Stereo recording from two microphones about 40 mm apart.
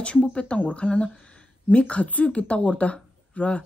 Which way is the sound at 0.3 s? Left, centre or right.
Left.